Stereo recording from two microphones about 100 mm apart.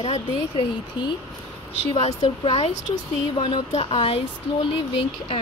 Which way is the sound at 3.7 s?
70° left (ahead or behind).